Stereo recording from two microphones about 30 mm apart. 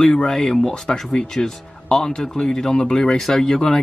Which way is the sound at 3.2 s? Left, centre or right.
Centre.